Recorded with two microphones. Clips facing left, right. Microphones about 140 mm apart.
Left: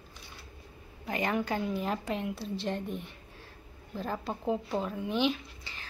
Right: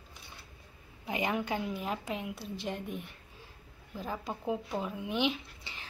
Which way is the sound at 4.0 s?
5° right (ahead or behind).